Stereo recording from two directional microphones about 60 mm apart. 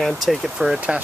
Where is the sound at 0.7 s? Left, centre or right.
Right.